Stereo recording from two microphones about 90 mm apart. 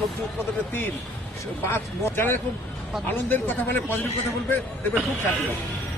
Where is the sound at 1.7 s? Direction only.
25° left (ahead or behind).